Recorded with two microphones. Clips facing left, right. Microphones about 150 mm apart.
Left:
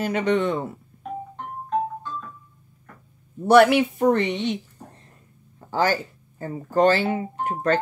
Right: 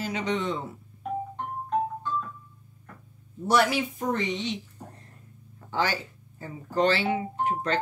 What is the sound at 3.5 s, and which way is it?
Speech, 60° left (ahead or behind).